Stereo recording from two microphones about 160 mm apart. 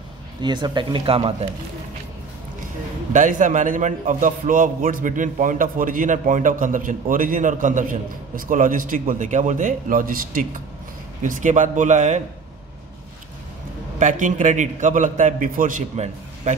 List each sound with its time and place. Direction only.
0.4 s speech: 25° right (ahead or behind)
3.1 s a man's voice: 50° right (ahead or behind)
13.9 s a man's voice: 50° right (ahead or behind)